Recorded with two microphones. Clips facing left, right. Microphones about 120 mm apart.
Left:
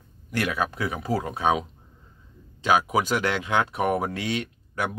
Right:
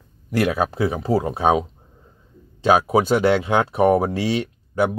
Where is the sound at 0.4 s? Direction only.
35° right (ahead or behind).